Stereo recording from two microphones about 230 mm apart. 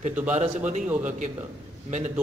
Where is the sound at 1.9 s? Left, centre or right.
Right.